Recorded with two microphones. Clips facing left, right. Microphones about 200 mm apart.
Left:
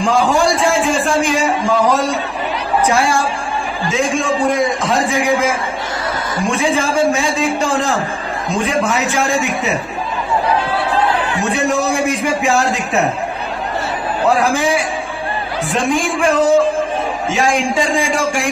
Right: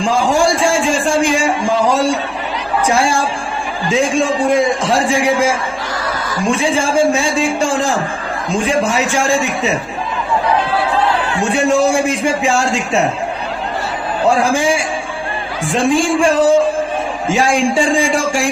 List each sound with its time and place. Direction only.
0.0 s a man's voice: 30° right (ahead or behind)
4.0 s a man's voice: 30° right (ahead or behind)
6.5 s a man's voice: 30° right (ahead or behind)
11.5 s a man's voice: 30° right (ahead or behind)
15.7 s a man's voice: 30° right (ahead or behind)